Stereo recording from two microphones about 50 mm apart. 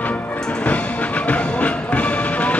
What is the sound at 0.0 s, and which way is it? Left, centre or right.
Music, left.